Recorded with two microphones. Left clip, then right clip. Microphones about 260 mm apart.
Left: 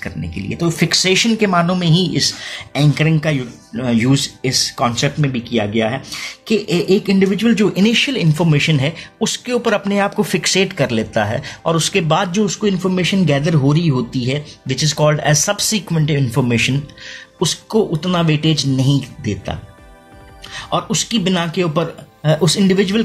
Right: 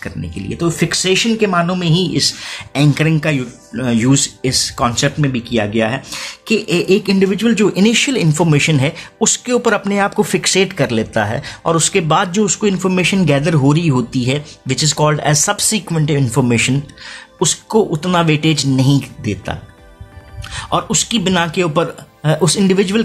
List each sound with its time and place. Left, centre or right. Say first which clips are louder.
0.0 s speech: even; centre
20.5 s speech: right 2 dB; centre